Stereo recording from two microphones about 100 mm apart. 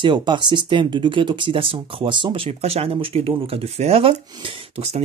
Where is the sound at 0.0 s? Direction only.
50° right (ahead or behind).